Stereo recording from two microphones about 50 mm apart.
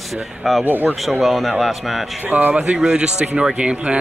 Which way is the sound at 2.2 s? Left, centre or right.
Right.